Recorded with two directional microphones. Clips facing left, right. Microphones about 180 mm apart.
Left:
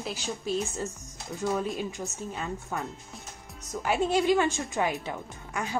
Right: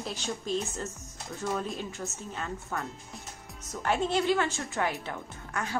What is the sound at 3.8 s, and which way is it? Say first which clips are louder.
A woman's voice: left 2 dB; 10° left (ahead or behind).